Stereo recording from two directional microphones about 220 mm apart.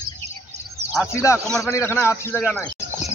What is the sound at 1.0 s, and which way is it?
A man's voice, 15° left (ahead or behind).